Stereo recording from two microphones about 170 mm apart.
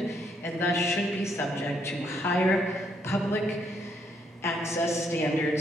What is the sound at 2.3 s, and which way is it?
A woman's voice, 10° left (ahead or behind).